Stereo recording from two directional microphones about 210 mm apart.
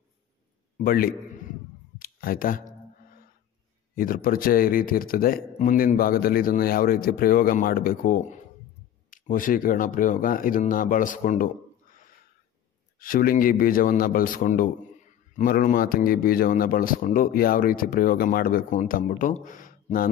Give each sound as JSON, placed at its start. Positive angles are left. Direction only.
{"t": 0.7, "sound": "speech", "side_deg": 45}
{"t": 2.0, "sound": "clicking", "side_deg": 40}
{"t": 3.9, "sound": "speech", "side_deg": 45}
{"t": 13.0, "sound": "speech", "side_deg": 40}